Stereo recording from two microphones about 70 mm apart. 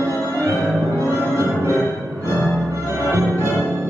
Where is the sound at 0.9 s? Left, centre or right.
Right.